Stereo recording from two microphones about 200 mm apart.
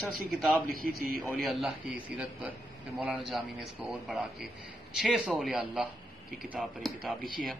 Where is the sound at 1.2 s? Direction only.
Centre (ahead or behind).